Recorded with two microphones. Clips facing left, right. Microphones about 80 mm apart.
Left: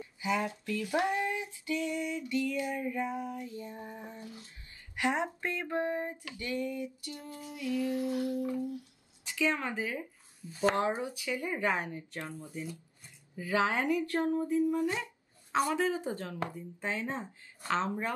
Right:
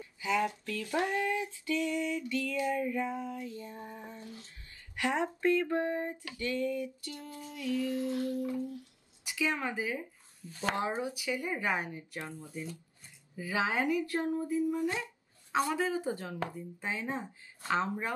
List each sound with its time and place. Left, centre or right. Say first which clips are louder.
0.0 s a sound: right 1 dB; left
9.2 s a woman's voice: left 1 dB; centre
13.4 s speech: left 2 dB; centre